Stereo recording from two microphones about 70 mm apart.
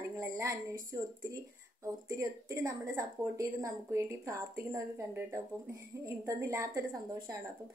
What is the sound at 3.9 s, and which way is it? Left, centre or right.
Speech, right.